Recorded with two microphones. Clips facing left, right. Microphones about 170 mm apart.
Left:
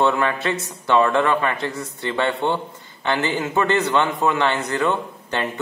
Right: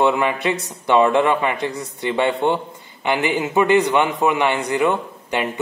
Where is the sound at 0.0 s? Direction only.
15° right (ahead or behind).